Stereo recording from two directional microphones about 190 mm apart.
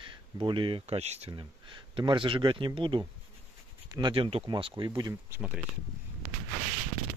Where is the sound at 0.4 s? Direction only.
25° right (ahead or behind).